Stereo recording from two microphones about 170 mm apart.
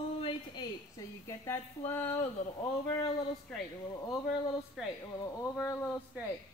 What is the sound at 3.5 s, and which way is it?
Speech, 5° left (ahead or behind).